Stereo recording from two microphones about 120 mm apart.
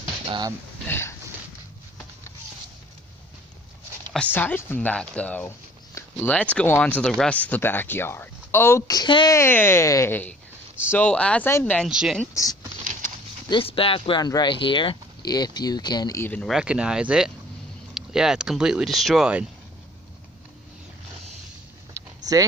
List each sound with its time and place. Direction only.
0.8 s speech: 20° left (ahead or behind)
4.1 s speech: 10° left (ahead or behind); by 9.3 s 40° left (ahead or behind)
9.3 s speech: 20° left (ahead or behind)
11.9 s speech: 5° right (ahead or behind)
13.5 s speech: 50° left (ahead or behind)
14.2 s speech: 35° left (ahead or behind)
16.2 s speech: 15° left (ahead or behind)
16.4 s speech: 5° right (ahead or behind)
22.0 s a sound: 25° right (ahead or behind)